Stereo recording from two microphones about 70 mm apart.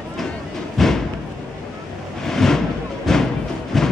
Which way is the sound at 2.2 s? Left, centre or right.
Centre.